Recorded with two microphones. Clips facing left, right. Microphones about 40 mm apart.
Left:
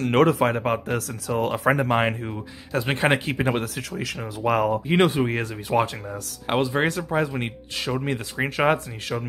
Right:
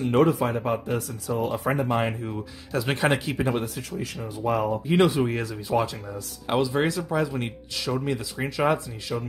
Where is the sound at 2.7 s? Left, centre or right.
Left.